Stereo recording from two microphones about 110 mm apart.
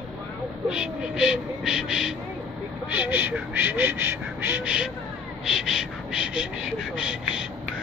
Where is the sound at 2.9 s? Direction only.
15° right (ahead or behind).